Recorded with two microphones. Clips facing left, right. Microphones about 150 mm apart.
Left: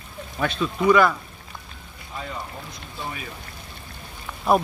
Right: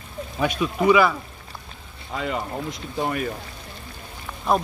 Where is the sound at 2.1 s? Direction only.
90° right.